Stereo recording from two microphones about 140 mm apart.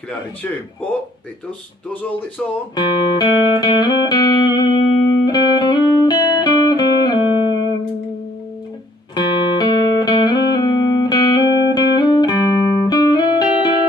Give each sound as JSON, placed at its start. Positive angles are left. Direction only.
{"t": 1.9, "sound": "speech", "side_deg": 10}
{"t": 2.7, "sound": "music", "side_deg": 30}
{"t": 9.1, "sound": "music", "side_deg": 30}